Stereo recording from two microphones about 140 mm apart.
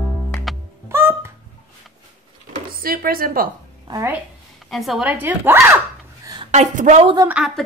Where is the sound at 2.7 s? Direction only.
90° right.